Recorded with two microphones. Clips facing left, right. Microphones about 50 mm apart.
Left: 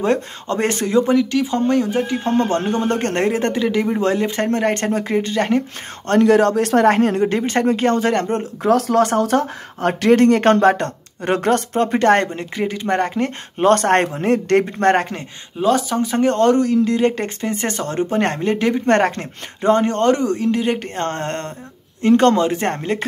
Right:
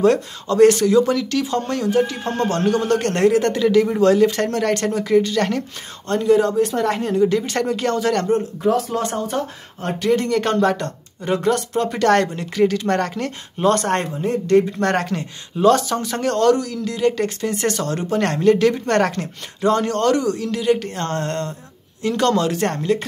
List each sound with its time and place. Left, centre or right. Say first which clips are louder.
0.0 s speech: right 2 dB; left
6.0 s speech: left 3 dB; left
8.3 s speech: left 1 dB; left
13.6 s speech: left 4 dB; left
14.8 s speech: left 4 dB; left
15.6 s speech: right 1 dB; centre; by 23.0 s left